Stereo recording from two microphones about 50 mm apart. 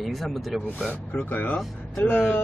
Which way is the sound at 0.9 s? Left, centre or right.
Left.